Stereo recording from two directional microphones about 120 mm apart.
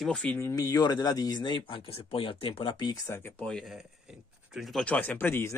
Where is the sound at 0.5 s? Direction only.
30° left (ahead or behind).